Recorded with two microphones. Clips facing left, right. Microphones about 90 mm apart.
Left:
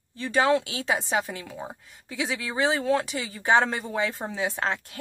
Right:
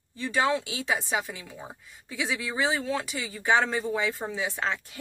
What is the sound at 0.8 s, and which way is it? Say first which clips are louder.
Speech: left 2 dB; 40° left (ahead or behind).